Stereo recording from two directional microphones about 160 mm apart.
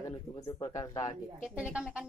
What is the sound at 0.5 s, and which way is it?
Speech, 25° left (ahead or behind).